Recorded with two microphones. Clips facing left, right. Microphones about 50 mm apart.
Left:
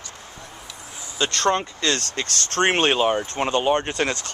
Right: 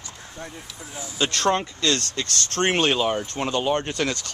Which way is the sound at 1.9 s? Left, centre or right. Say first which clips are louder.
Even; left.